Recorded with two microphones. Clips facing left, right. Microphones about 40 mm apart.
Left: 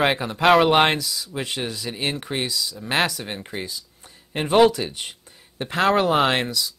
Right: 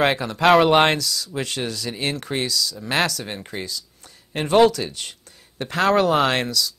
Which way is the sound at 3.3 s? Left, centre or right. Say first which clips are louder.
Even; centre.